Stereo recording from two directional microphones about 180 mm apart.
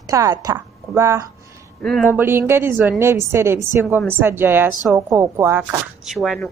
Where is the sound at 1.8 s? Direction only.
5° left (ahead or behind).